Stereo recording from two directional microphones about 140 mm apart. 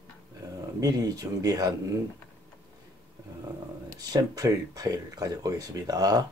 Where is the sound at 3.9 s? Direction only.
25° right (ahead or behind).